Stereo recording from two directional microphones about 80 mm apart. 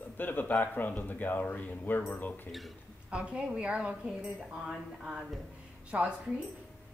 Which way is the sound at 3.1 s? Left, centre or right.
Centre.